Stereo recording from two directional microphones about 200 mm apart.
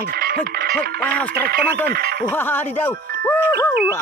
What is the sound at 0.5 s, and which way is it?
Music, 50° right (ahead or behind).